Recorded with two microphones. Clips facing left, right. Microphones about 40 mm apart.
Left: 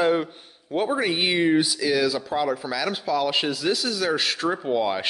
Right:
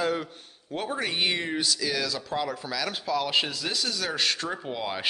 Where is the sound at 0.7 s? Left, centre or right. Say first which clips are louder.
Left 6 dB; centre.